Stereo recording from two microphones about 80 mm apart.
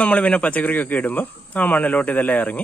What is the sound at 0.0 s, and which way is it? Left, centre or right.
Speech, centre.